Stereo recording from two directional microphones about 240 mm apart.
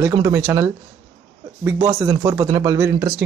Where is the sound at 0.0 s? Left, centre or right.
Centre.